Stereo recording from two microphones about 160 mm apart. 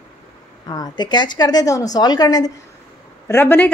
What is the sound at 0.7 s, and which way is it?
A woman's voice, 25° left (ahead or behind).